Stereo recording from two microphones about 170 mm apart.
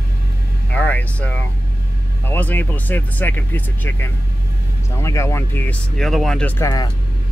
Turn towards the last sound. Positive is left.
turn(degrees=20)  # may be behind; listen again after turning